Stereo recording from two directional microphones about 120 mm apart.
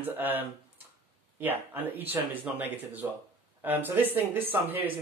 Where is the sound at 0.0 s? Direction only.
15° right (ahead or behind).